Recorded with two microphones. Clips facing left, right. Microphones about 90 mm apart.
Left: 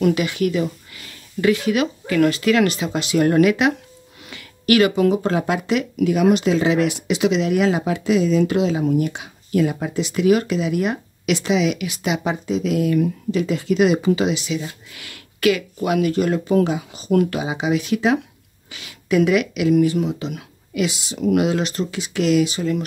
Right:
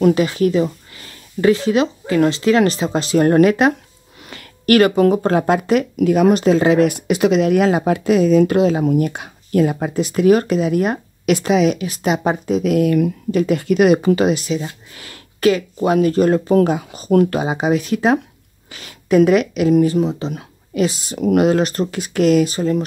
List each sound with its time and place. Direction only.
0.0 s speech: 35° right (ahead or behind)